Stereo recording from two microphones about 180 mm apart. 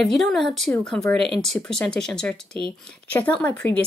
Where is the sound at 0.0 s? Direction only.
Centre (ahead or behind).